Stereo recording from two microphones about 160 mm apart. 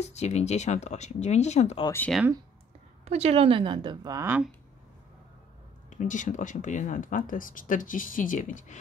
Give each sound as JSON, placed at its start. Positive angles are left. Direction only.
{"t": 0.0, "sound": "speech", "side_deg": 45}
{"t": 1.9, "sound": "speech", "side_deg": 10}
{"t": 3.1, "sound": "speech", "side_deg": -40}
{"t": 5.9, "sound": "speech", "side_deg": 50}